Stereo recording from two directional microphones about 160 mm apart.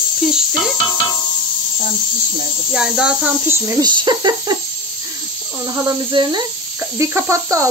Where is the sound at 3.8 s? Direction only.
30° right (ahead or behind).